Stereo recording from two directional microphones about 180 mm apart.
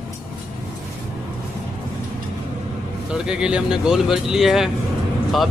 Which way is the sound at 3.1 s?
5° right (ahead or behind).